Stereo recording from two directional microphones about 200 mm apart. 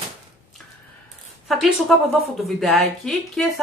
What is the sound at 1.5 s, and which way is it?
Speech, centre (ahead or behind).